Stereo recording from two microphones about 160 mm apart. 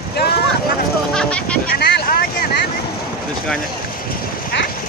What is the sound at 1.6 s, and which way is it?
Speech, 85° left.